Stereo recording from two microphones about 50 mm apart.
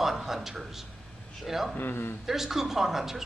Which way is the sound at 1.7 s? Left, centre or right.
Left.